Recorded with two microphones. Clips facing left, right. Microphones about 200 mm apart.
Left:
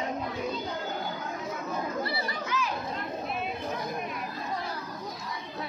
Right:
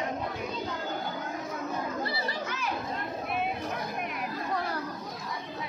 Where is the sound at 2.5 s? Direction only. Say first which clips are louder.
Left 6 dB; 55° right (ahead or behind).